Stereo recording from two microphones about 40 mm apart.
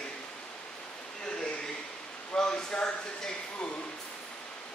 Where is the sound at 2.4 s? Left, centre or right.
Centre.